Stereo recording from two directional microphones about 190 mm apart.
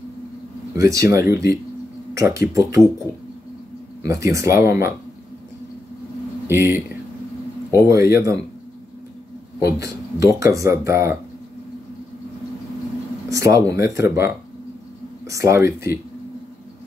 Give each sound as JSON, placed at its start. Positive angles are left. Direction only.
{"t": 0.7, "sound": "speech", "side_deg": -15}
{"t": 4.0, "sound": "speech", "side_deg": -15}
{"t": 6.4, "sound": "speech", "side_deg": -10}
{"t": 9.6, "sound": "a man's voice", "side_deg": -15}
{"t": 13.3, "sound": "speech", "side_deg": -15}